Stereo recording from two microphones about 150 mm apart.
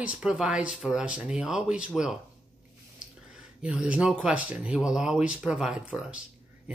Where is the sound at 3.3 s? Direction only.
5° right (ahead or behind).